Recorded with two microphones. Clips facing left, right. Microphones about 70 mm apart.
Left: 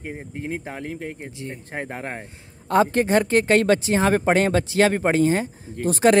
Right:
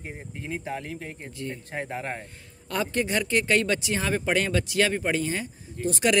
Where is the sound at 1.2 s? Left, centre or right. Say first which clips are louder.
Left 1 dB; left.